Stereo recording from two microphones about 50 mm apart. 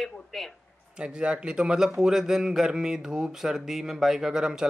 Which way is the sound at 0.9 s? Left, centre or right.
Centre.